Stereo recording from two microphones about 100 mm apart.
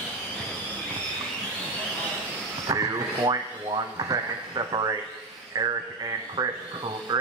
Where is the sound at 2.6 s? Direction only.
40° right (ahead or behind).